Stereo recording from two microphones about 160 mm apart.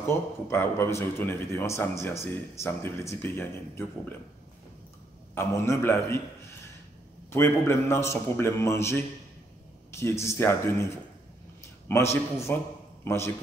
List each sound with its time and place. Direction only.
0.0 s a man's voice: 15° left (ahead or behind)
5.3 s a man's voice: 15° left (ahead or behind)
7.2 s a man's voice: 15° left (ahead or behind)
11.9 s a man's voice: 15° left (ahead or behind)